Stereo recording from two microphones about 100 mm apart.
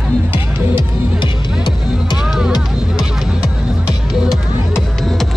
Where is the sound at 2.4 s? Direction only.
5° right (ahead or behind).